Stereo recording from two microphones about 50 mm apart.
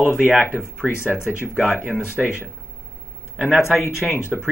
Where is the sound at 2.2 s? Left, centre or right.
Centre.